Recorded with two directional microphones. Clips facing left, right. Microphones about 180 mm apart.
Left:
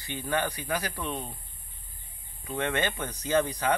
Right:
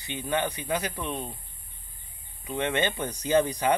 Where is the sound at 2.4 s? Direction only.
20° right (ahead or behind).